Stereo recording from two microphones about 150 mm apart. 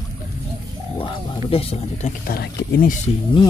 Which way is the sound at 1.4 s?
40° left (ahead or behind).